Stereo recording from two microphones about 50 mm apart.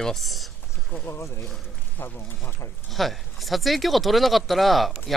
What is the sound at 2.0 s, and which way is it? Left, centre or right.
Speech, left.